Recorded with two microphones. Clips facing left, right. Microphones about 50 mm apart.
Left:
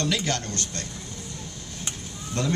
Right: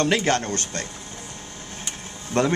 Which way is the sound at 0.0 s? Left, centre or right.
Right.